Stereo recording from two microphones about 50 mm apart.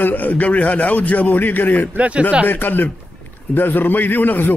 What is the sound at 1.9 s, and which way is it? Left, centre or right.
Speech, right.